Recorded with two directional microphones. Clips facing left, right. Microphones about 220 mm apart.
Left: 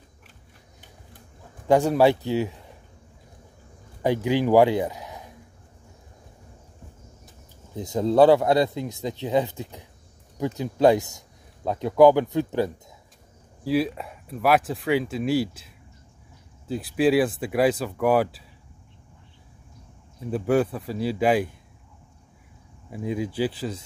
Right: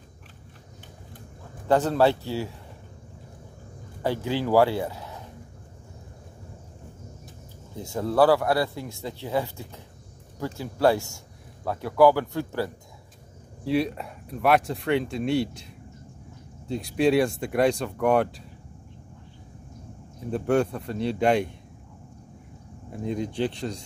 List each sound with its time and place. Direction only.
1.7 s speech: 15° left (ahead or behind)
4.0 s speech: 15° left (ahead or behind)
7.7 s speech: 20° left (ahead or behind)
13.7 s speech: centre (ahead or behind)
20.2 s speech: 5° left (ahead or behind)
22.8 s speech: 5° left (ahead or behind)